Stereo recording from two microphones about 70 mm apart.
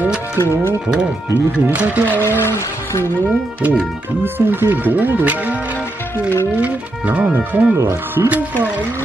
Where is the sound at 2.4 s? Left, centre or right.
Left.